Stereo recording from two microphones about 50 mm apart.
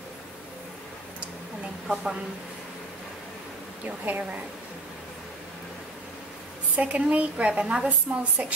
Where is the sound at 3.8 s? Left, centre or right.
Right.